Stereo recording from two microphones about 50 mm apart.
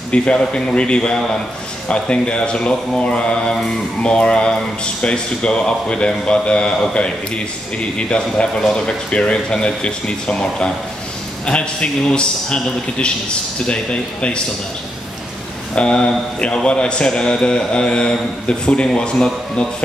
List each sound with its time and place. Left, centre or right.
0.1 s speech: left
8.1 s a man's voice: centre
11.4 s speech: left
15.7 s a man's voice: centre